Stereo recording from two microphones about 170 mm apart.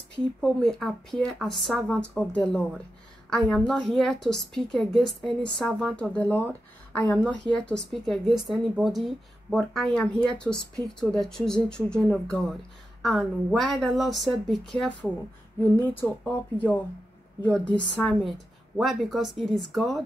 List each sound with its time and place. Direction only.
0.1 s a woman's voice: 5° left (ahead or behind)